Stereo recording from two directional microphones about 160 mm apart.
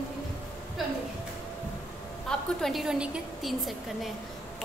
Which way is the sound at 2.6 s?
Centre (ahead or behind).